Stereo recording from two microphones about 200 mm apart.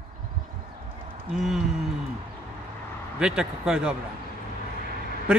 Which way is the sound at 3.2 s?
5° right (ahead or behind).